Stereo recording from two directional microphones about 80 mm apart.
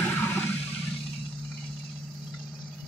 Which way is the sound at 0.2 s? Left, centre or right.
Left.